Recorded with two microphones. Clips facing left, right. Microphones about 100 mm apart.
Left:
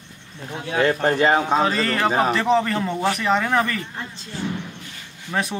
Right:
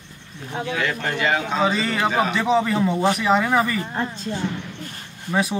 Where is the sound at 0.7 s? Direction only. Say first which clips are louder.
Left 7 dB; 35° left (ahead or behind).